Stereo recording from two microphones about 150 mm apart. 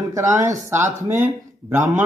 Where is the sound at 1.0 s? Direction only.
55° right (ahead or behind).